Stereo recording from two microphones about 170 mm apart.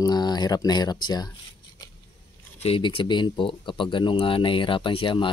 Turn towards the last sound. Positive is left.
turn(degrees=30)  # may be behind; listen again after turning